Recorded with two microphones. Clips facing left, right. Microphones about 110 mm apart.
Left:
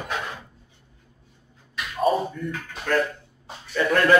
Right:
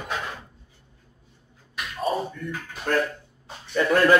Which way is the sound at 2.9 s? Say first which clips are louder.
Left 1 dB; 30° right (ahead or behind).